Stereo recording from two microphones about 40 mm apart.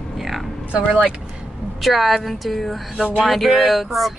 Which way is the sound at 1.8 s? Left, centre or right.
Centre.